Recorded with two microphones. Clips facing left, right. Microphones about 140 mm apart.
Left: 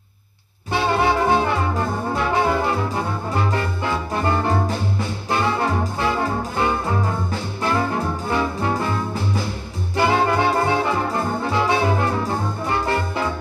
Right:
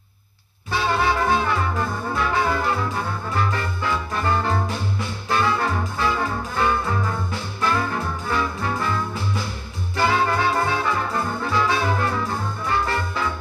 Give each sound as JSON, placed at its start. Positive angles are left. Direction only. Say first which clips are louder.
{"t": 0.7, "sound": "music", "louder": "left 3 dB", "side_deg": 20}
{"t": 9.9, "sound": "music", "louder": "left 3 dB", "side_deg": 20}
{"t": 11.4, "sound": "brass instrument", "louder": "left 2 dB", "side_deg": 25}
{"t": 12.2, "sound": "music", "louder": "left 3 dB", "side_deg": 25}